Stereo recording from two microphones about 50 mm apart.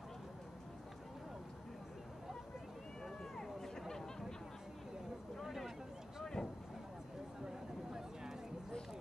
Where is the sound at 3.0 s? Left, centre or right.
Centre.